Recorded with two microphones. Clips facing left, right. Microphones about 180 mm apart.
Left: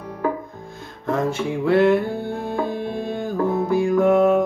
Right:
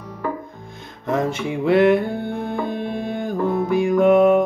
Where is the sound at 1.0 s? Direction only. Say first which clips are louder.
Even; 20° right (ahead or behind).